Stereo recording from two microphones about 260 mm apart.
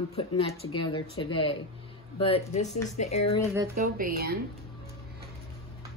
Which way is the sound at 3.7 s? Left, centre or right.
Right.